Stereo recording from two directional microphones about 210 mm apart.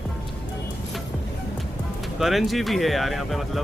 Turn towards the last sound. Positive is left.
turn(degrees=0)  # may be behind; listen again after turning